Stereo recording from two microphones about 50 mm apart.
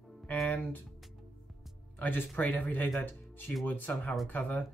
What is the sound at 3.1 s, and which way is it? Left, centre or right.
Music, left.